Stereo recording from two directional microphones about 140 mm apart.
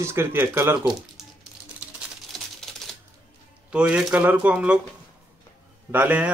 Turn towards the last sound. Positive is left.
turn(degrees=-10)  # may be behind; listen again after turning